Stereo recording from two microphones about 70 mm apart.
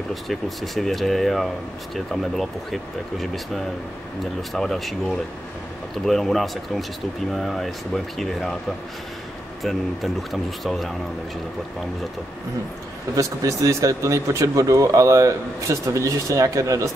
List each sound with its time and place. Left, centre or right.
0.1 s speech: centre
9.6 s speech: centre
13.1 s speech: right